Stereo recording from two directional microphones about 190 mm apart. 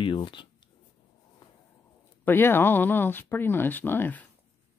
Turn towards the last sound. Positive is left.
turn(degrees=10)  # may be behind; listen again after turning